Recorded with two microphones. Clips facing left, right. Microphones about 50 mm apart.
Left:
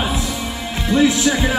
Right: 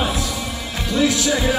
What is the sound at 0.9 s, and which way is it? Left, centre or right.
Music, left.